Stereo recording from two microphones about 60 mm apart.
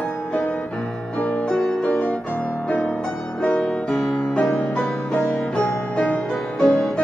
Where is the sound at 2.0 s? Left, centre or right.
Centre.